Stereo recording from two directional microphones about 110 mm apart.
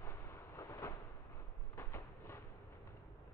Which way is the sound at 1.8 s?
25° left (ahead or behind).